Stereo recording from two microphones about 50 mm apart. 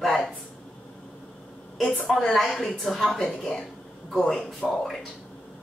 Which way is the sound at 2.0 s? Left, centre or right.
Centre.